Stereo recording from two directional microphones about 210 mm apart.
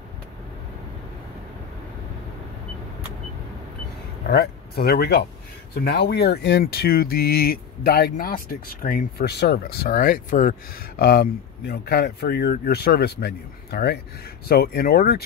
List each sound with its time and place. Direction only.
4.3 s speech: 50° left (ahead or behind)